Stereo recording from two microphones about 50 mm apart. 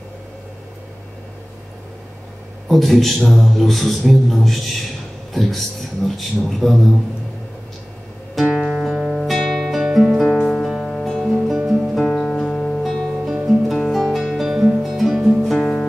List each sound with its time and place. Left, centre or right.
2.7 s a man's voice: centre
8.4 s music: centre
9.8 s music: centre
10.4 s music: centre
11.4 s music: centre
12.0 s music: centre
12.8 s music: centre
15.6 s music: centre